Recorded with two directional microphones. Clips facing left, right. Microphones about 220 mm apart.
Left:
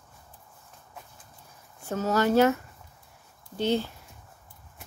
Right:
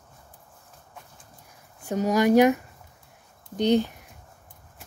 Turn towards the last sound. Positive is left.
turn(degrees=-15)  # may be behind; listen again after turning